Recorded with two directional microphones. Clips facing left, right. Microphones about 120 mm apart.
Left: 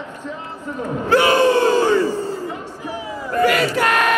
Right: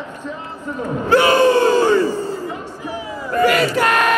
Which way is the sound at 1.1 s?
35° right (ahead or behind).